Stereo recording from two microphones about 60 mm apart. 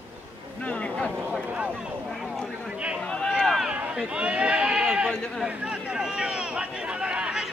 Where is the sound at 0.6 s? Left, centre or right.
Left.